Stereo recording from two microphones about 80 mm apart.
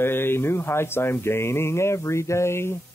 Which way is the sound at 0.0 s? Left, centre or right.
Left.